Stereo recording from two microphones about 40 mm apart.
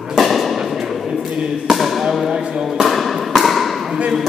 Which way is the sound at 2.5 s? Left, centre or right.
Centre.